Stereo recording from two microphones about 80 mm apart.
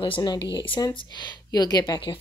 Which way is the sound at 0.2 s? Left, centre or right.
Left.